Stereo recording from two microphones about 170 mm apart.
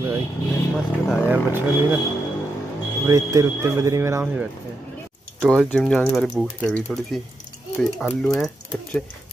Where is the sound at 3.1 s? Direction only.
20° right (ahead or behind).